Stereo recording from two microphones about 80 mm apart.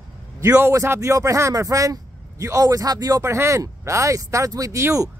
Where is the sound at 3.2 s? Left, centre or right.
Right.